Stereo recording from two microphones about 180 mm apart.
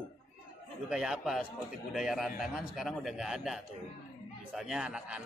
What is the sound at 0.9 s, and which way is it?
A man's voice, 5° right (ahead or behind).